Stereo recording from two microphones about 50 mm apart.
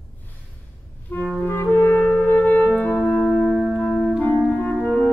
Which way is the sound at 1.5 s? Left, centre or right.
Left.